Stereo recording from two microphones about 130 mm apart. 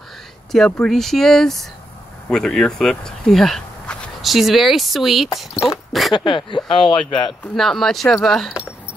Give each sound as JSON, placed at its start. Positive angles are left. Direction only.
{"t": 0.5, "sound": "speech", "side_deg": 5}
{"t": 5.5, "sound": "speech", "side_deg": 20}
{"t": 6.1, "sound": "speech", "side_deg": 40}
{"t": 7.5, "sound": "speech", "side_deg": 0}